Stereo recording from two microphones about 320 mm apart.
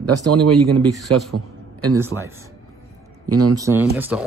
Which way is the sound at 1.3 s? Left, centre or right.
Right.